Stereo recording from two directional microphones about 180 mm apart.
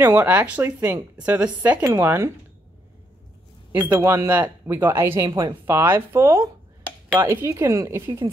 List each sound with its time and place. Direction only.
0.0 s speech: 10° right (ahead or behind)
3.7 s speech: 10° right (ahead or behind)